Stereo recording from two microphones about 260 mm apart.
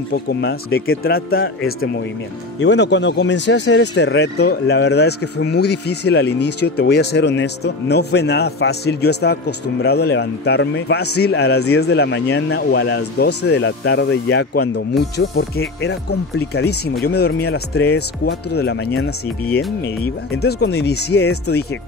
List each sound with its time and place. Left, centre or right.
0.4 s speech: left
2.6 s speech: left